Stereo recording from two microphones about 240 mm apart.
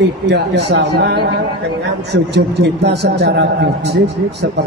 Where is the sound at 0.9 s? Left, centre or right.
Right.